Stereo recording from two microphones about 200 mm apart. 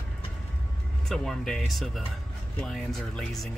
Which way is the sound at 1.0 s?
Centre (ahead or behind).